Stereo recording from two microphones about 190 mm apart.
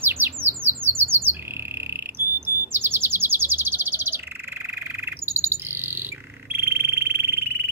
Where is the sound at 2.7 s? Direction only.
10° right (ahead or behind).